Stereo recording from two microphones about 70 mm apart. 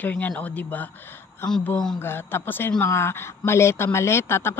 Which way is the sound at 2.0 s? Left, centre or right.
Left.